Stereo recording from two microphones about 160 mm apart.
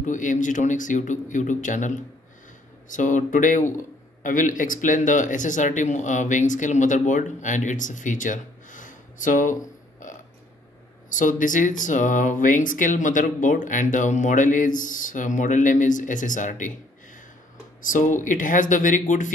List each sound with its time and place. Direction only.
0.0 s a man's voice: 50° left (ahead or behind)
17.8 s a man's voice: 55° left (ahead or behind)